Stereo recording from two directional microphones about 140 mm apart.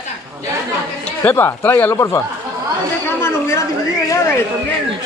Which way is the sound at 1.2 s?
15° left (ahead or behind).